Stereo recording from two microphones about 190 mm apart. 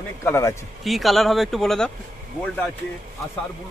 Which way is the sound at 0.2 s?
15° left (ahead or behind).